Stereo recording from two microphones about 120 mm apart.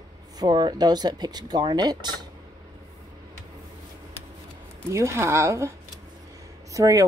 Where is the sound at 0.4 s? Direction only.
35° right (ahead or behind).